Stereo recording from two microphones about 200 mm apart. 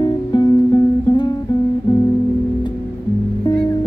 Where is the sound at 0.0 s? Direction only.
20° left (ahead or behind).